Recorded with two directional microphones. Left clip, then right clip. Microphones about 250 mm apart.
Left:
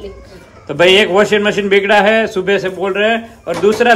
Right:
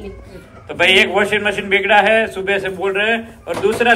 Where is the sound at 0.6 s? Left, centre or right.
Left.